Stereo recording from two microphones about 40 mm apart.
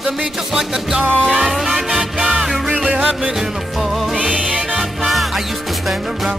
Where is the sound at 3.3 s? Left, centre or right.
Centre.